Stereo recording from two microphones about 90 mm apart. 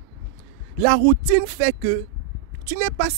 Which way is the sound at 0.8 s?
30° right (ahead or behind).